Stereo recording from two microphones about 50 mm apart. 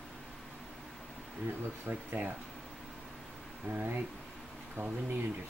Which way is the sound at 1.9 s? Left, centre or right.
Right.